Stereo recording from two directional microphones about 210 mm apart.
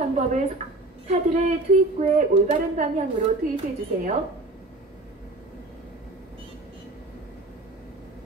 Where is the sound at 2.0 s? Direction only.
35° right (ahead or behind).